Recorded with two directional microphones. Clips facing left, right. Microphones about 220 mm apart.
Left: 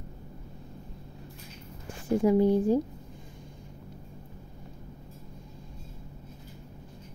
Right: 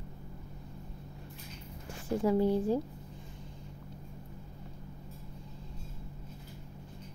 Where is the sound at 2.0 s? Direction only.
15° left (ahead or behind).